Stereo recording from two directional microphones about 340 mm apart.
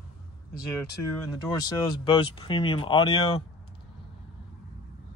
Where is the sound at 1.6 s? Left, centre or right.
Centre.